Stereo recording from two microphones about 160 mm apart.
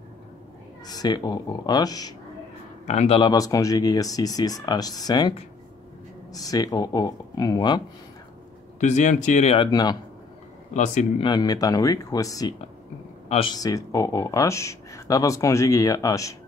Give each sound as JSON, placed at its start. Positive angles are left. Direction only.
{"t": 0.8, "sound": "speech", "side_deg": 25}
{"t": 2.9, "sound": "speech", "side_deg": 45}
{"t": 3.2, "sound": "speech", "side_deg": 25}
{"t": 6.3, "sound": "speech", "side_deg": 25}
{"t": 8.7, "sound": "speech", "side_deg": 50}
{"t": 9.6, "sound": "speech", "side_deg": 25}
{"t": 11.1, "sound": "speech", "side_deg": 25}
{"t": 13.3, "sound": "a man's voice", "side_deg": 35}
{"t": 13.6, "sound": "speech", "side_deg": 20}